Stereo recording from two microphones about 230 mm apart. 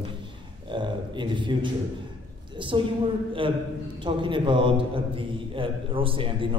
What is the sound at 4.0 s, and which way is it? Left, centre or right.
A man's voice, right.